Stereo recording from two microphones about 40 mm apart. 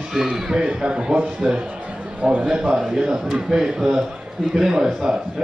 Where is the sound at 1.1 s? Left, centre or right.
Right.